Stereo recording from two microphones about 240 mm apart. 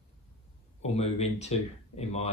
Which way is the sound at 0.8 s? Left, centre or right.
Left.